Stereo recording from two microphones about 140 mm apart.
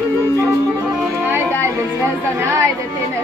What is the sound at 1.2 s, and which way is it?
Music, 15° right (ahead or behind).